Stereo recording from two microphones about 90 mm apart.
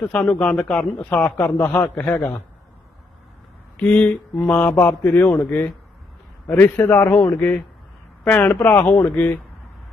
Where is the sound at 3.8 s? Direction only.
15° left (ahead or behind).